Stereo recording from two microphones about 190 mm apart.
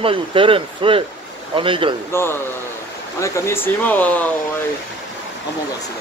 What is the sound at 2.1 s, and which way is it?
Speech, 10° left (ahead or behind).